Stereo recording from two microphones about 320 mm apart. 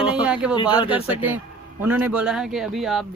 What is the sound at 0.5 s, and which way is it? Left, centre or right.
Speech, centre.